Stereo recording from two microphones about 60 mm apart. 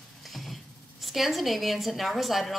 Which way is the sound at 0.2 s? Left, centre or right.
Centre.